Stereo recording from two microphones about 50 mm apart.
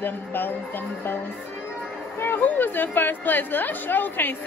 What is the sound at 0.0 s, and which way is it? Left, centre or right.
A woman's voice, left.